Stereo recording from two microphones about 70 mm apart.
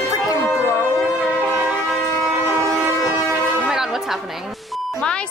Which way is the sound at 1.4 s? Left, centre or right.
Right.